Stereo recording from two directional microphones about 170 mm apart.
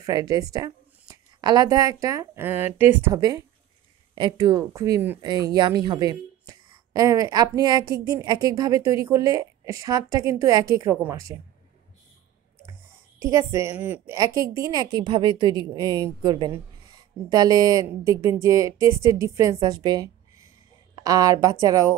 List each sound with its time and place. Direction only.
0.0 s a woman's voice: 20° right (ahead or behind)
13.2 s a woman's voice: 15° right (ahead or behind)
14.1 s a woman's voice: 20° right (ahead or behind)